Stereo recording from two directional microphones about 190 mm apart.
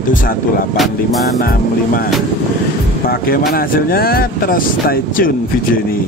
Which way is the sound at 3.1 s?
50° left (ahead or behind).